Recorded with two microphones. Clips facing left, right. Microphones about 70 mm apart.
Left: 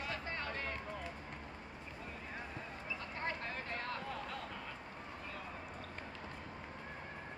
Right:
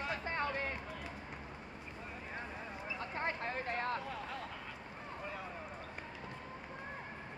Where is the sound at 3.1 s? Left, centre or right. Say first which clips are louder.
Right 4 dB; right.